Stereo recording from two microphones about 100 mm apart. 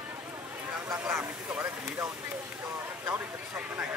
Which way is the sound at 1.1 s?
20° right (ahead or behind).